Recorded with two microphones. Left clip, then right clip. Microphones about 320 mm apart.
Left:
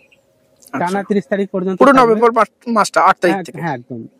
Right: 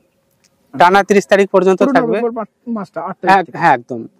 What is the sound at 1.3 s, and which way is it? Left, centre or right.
Speech, centre.